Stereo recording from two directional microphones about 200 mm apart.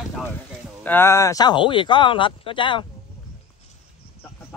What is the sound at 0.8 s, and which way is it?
Speech, 10° left (ahead or behind).